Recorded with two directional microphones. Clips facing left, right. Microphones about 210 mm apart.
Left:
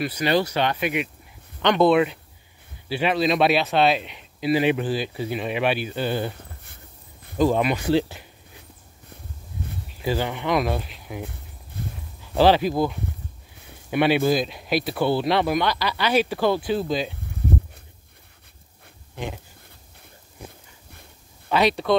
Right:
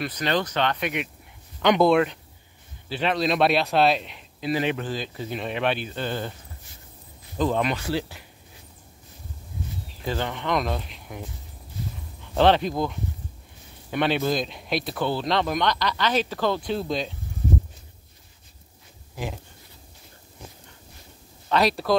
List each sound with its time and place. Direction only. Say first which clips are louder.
0.0 s a man's voice: left 4 dB; 10° left (ahead or behind)
4.4 s speech: left 5 dB; 10° left (ahead or behind)
7.3 s speech: left 4 dB; 10° left (ahead or behind)
10.0 s speech: left 3 dB; 10° left (ahead or behind)
11.8 s a sound: left 1 dB; 55° left (ahead or behind)
12.4 s a man's voice: left 2 dB; 5° left (ahead or behind)
21.5 s a man's voice: left 2 dB; centre (ahead or behind)